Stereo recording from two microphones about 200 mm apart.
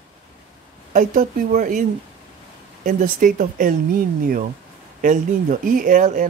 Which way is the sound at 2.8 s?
40° right (ahead or behind).